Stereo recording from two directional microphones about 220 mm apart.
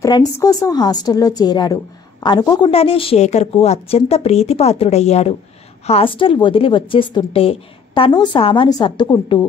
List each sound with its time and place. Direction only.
0.4 s a woman's voice: 15° left (ahead or behind)